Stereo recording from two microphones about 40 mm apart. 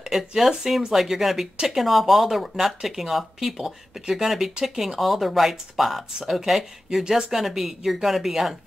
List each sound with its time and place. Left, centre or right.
0.4 s speech: centre
3.5 s speech: centre
4.1 s speech: centre
6.9 s speech: centre